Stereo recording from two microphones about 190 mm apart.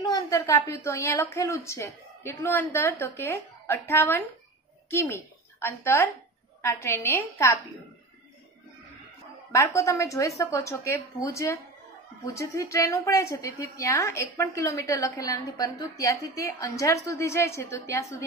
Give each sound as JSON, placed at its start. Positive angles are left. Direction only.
{"t": 0.0, "sound": "a woman's voice", "side_deg": 20}
{"t": 9.5, "sound": "a woman's voice", "side_deg": 15}